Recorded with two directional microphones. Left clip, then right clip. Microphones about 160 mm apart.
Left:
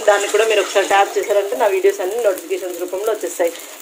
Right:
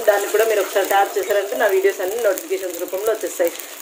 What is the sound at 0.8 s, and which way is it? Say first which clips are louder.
Speech: left 3 dB; 20° left (ahead or behind).